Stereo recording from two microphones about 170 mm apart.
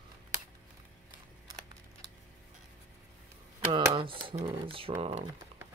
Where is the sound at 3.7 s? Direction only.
30° right (ahead or behind).